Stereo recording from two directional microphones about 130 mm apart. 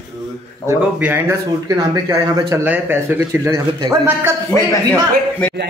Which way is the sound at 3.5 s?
30° right (ahead or behind).